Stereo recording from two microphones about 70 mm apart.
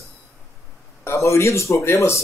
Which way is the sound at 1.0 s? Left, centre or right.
Left.